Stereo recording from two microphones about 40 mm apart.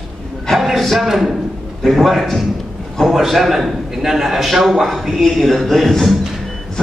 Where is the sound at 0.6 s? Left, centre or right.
Centre.